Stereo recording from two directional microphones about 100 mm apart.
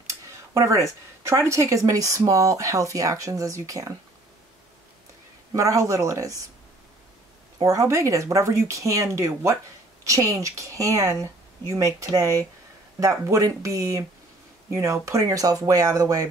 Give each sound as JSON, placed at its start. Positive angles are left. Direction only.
{"t": 0.0, "sound": "speech", "side_deg": -30}
{"t": 5.5, "sound": "speech", "side_deg": -35}
{"t": 7.6, "sound": "speech", "side_deg": -30}